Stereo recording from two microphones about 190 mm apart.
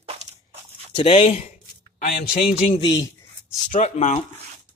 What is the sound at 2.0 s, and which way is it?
Speech, 50° left (ahead or behind).